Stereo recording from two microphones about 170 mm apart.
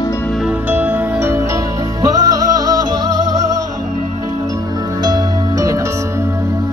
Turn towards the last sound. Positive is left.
turn(degrees=-20)  # may be behind; listen again after turning